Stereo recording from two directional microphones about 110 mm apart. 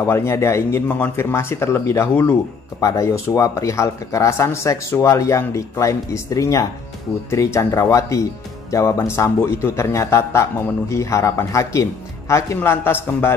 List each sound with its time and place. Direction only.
0.0 s a man's voice: 25° left (ahead or behind)